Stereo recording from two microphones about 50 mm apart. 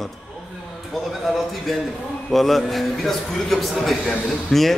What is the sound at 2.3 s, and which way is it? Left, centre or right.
Speech, centre.